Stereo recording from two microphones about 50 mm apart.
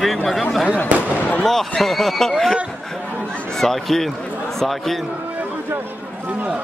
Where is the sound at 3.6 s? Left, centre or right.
Centre.